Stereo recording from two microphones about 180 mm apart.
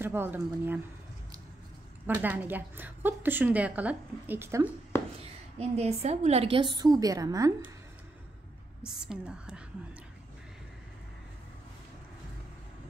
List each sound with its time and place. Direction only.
0.0 s a woman's voice: 10° right (ahead or behind)
2.2 s a woman's voice: 10° right (ahead or behind)
5.6 s a woman's voice: 35° right (ahead or behind); by 7.7 s 20° right (ahead or behind)
8.8 s a woman's voice: 5° right (ahead or behind)